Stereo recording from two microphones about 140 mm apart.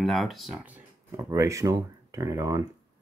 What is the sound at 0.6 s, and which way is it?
Speech, 15° right (ahead or behind).